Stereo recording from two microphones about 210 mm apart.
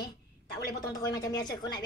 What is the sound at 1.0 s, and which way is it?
Speech, 15° left (ahead or behind).